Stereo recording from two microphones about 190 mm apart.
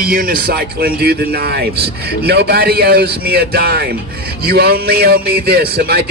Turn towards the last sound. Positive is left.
turn(degrees=-55)  # may be behind; listen again after turning